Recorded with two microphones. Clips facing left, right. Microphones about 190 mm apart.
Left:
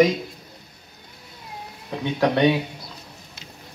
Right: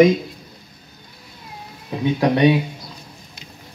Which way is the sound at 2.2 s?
5° right (ahead or behind).